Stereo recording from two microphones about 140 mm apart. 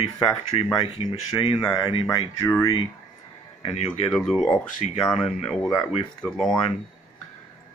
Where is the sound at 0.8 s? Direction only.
45° left (ahead or behind).